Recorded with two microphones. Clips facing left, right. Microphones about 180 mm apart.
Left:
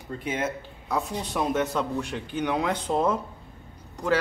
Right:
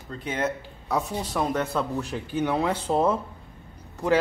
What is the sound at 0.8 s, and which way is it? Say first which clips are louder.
A man's voice: right 1 dB; 5° right (ahead or behind).